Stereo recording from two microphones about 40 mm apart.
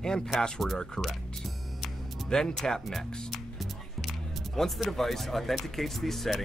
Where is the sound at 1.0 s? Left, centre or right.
Centre.